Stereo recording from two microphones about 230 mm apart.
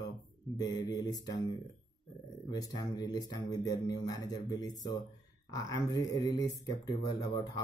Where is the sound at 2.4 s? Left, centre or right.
Centre.